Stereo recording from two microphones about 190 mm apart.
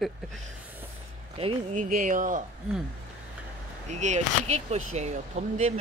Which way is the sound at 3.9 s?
40° right (ahead or behind).